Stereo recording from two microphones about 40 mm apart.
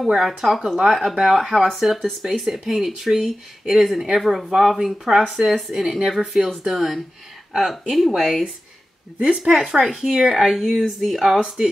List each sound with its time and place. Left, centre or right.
0.4 s speech: centre
9.2 s a woman's voice: centre
9.8 s speech: centre
11.3 s speech: centre